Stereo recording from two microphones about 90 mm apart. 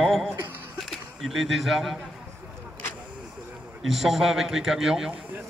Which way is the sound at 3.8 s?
Centre (ahead or behind).